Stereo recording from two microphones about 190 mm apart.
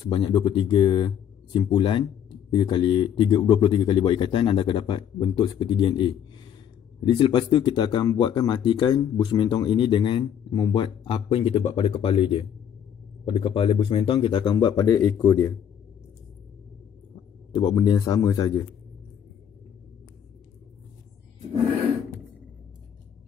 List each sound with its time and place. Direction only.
0.0 s speech: 25° left (ahead or behind)
17.6 s speech: 20° left (ahead or behind)